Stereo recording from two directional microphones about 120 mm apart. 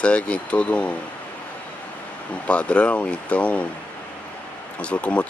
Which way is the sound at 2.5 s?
10° left (ahead or behind).